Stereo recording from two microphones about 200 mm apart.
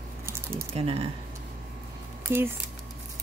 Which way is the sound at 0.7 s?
30° right (ahead or behind).